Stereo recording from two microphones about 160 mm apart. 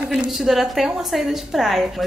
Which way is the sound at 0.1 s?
Centre (ahead or behind).